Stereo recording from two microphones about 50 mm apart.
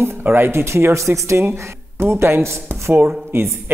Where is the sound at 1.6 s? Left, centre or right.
Right.